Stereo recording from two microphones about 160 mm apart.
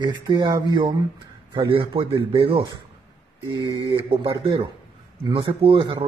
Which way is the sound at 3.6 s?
30° right (ahead or behind).